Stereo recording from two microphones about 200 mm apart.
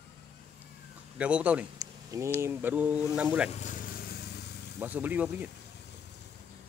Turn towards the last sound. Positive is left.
turn(degrees=-10)  # may be behind; listen again after turning